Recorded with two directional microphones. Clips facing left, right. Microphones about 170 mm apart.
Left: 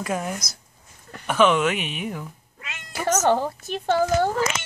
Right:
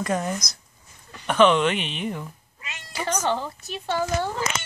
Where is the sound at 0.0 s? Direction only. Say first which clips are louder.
Right 2 dB; 5° left (ahead or behind).